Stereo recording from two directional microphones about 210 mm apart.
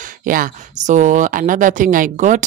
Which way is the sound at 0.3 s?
40° right (ahead or behind).